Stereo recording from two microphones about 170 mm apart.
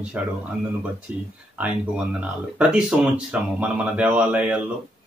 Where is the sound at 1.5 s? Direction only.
10° right (ahead or behind).